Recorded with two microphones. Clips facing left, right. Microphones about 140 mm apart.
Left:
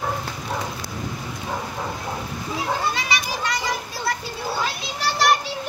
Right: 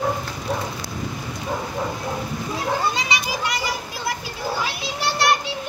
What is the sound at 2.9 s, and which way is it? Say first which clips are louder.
Children playing: right 1 dB; 20° right (ahead or behind).